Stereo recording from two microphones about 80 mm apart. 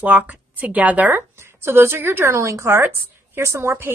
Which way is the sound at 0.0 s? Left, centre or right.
Centre.